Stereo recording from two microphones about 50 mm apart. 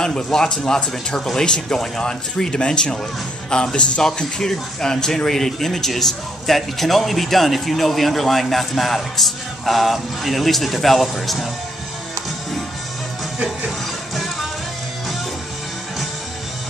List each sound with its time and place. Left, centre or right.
0.0 s a man's voice: centre